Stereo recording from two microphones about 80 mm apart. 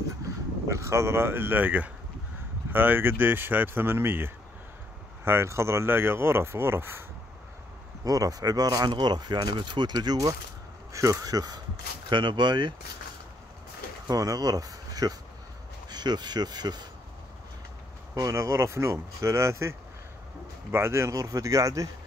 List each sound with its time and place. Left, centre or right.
0.7 s speech: right
8.0 s speech: right
8.9 s speech: right
10.9 s speech: right
12.1 s speech: right
14.0 s speech: right
15.9 s speech: right
18.1 s speech: right
20.7 s speech: right